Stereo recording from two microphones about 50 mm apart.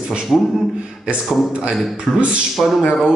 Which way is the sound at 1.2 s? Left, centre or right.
Centre.